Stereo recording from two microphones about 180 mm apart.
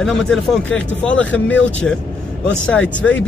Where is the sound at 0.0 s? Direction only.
5° left (ahead or behind).